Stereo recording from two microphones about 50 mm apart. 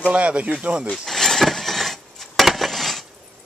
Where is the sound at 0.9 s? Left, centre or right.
Centre.